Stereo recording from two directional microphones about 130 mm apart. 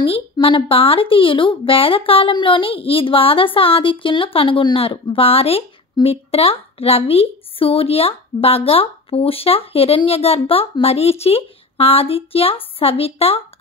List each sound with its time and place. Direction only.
0.0 s speech: 40° left (ahead or behind)